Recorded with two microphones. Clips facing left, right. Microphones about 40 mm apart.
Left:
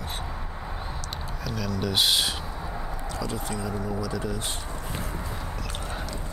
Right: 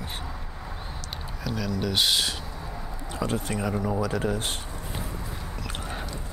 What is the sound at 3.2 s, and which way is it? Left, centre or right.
Speech, right.